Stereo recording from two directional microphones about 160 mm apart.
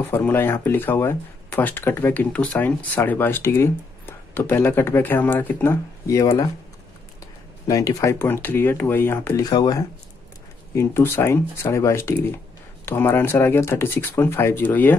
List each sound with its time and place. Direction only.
0.1 s speech: 10° left (ahead or behind)
7.6 s speech: 20° left (ahead or behind)
9.5 s speech: 25° left (ahead or behind)